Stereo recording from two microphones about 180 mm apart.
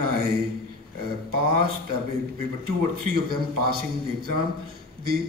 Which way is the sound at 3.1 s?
60° right (ahead or behind).